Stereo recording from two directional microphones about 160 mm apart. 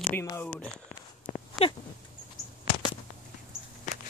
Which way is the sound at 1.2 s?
30° left (ahead or behind).